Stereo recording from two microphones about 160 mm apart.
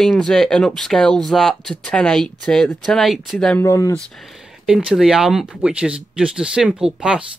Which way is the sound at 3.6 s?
20° left (ahead or behind).